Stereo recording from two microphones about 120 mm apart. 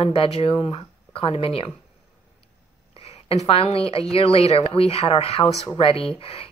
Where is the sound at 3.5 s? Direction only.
55° left (ahead or behind).